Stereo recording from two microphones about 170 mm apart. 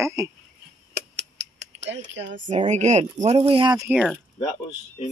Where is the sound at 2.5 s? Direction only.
45° right (ahead or behind); by 3.9 s 25° right (ahead or behind).